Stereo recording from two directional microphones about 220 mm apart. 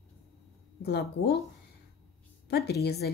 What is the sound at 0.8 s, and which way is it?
Speech, 50° left (ahead or behind).